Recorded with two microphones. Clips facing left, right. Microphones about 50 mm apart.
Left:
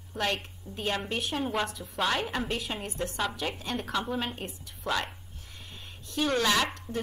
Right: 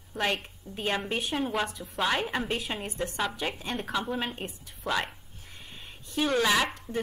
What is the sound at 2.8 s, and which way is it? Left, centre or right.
A woman's voice, centre.